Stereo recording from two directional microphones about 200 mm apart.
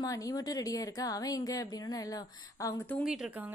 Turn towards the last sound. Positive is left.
turn(degrees=-5)  # may be behind; listen again after turning